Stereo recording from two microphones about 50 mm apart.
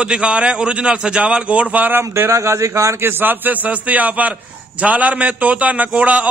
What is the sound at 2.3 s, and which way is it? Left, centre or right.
Speech, right.